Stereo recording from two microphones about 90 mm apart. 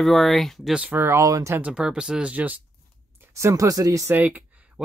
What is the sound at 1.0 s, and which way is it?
Speech, 35° right (ahead or behind).